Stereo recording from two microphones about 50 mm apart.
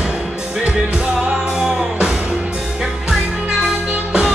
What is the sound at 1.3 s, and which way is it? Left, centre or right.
Music, centre.